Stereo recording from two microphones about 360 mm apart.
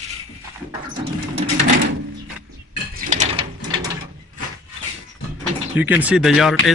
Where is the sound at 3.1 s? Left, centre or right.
Centre.